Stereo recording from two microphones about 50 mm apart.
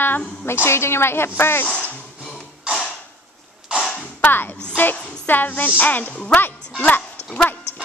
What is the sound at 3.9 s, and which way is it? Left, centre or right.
Whip, left.